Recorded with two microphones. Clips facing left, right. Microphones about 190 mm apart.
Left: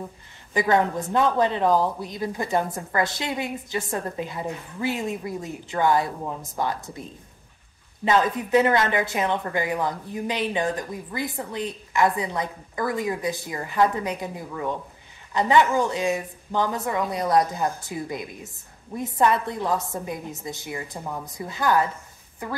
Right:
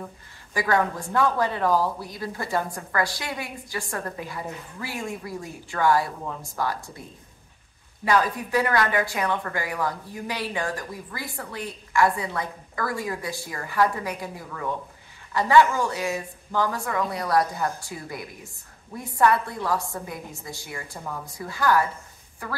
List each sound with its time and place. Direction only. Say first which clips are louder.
0.5 s a woman's voice: left 3 dB; 20° left (ahead or behind)